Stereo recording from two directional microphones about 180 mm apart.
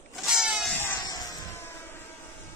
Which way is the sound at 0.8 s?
15° left (ahead or behind).